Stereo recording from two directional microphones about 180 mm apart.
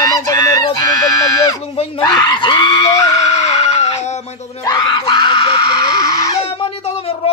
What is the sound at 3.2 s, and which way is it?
Music, 35° left (ahead or behind).